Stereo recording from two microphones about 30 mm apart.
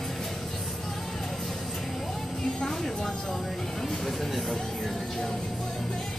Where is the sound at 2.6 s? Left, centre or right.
Centre.